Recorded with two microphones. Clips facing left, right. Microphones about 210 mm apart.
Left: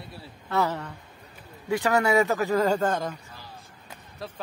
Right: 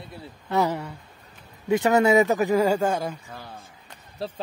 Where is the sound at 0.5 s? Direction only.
15° right (ahead or behind).